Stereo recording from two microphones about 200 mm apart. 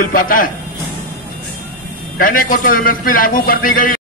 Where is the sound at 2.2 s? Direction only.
45° left (ahead or behind).